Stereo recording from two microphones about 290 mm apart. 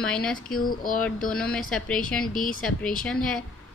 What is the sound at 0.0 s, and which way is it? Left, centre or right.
Speech, centre.